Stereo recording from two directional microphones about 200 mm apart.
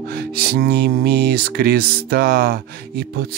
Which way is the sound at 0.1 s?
50° right (ahead or behind).